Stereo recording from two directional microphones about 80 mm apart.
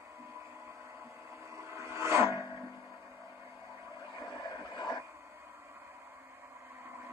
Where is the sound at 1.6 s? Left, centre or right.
Right.